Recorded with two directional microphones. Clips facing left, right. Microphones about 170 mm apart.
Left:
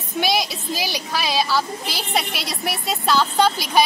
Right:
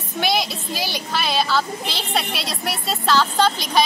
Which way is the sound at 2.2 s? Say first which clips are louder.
Left 1 dB; centre (ahead or behind).